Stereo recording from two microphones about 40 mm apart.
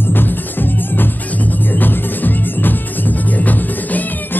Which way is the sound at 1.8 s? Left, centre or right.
Left.